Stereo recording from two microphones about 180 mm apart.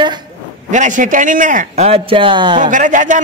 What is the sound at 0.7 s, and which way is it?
A man's voice, 45° right (ahead or behind).